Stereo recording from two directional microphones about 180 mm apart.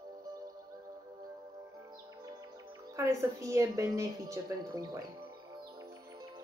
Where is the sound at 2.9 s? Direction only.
15° right (ahead or behind).